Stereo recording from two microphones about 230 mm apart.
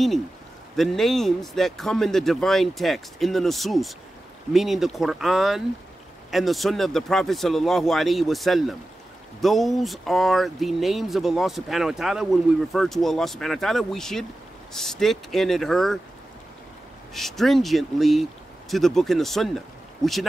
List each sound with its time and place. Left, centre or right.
0.7 s speech: centre
17.1 s speech: centre